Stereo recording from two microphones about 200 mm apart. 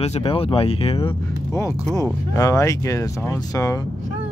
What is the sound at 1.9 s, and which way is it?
Speech, 15° left (ahead or behind).